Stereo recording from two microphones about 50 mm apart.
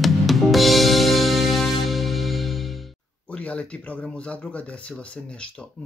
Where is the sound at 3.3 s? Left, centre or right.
Left.